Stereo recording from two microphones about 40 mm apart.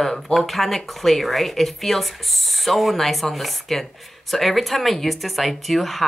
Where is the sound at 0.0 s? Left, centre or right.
Centre.